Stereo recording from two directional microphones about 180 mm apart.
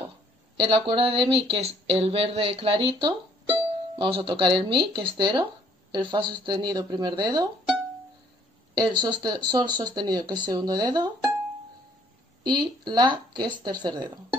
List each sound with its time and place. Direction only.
0.6 s speech: 30° right (ahead or behind)
8.7 s speech: 25° right (ahead or behind)
12.4 s speech: 25° right (ahead or behind)